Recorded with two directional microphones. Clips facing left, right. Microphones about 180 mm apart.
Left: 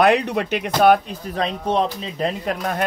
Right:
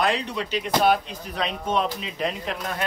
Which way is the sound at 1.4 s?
35° left (ahead or behind).